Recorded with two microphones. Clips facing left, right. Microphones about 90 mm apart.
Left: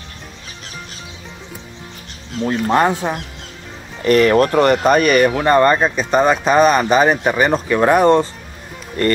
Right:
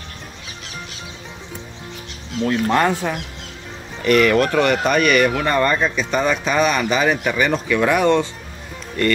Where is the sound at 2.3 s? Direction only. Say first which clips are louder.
Even; 40° left (ahead or behind).